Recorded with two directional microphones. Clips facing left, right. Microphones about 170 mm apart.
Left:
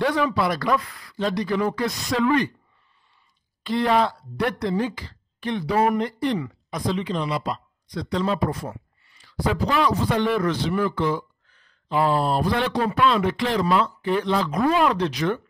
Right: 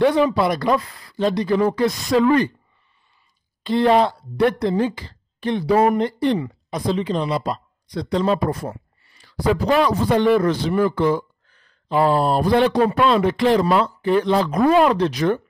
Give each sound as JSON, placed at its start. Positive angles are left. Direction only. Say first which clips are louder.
{"t": 0.0, "sound": "a man's voice", "louder": "right 5 dB", "side_deg": -25}
{"t": 3.6, "sound": "a man's voice", "louder": "right 5 dB", "side_deg": -25}